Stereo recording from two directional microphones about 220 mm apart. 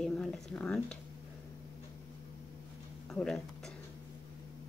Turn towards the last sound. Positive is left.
turn(degrees=5)  # may be behind; listen again after turning